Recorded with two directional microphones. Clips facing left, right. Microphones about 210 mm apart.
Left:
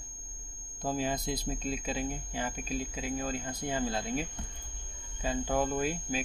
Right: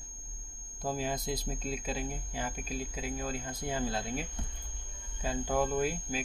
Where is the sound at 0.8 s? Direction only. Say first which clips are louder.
Left 2 dB; 10° right (ahead or behind).